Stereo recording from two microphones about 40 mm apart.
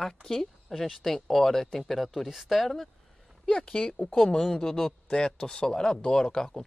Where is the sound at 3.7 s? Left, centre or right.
Centre.